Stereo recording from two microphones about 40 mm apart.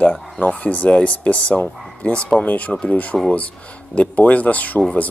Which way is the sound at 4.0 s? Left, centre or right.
Left.